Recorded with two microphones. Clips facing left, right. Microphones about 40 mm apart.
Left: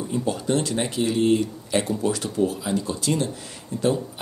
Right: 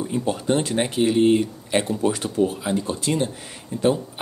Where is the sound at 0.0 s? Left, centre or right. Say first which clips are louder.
Right 1 dB; right.